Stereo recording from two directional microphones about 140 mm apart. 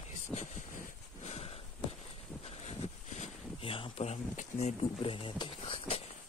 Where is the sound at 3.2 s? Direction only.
40° left (ahead or behind).